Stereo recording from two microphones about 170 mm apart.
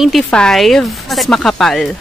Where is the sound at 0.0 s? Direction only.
Centre (ahead or behind).